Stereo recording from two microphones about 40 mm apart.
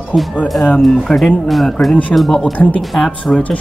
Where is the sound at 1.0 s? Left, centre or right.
Centre.